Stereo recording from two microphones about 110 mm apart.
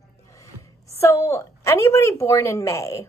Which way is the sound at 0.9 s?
25° left (ahead or behind).